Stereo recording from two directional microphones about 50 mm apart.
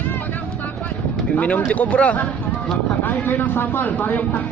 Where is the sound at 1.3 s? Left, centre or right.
Left.